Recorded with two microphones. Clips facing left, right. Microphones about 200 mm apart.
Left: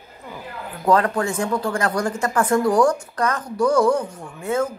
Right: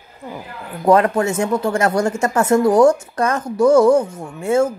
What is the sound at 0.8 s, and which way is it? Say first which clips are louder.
Speech: right 5 dB; 20° right (ahead or behind).